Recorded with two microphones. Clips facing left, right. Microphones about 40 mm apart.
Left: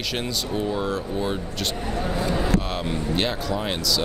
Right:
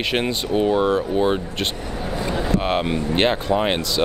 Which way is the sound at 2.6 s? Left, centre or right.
Right.